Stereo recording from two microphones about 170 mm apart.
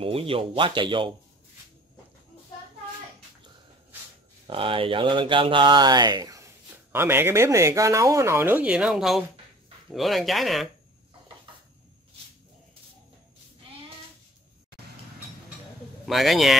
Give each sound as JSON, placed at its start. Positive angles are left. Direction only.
{"t": 0.0, "sound": "speech", "side_deg": -35}
{"t": 4.5, "sound": "speech", "side_deg": -30}
{"t": 16.1, "sound": "speech", "side_deg": 0}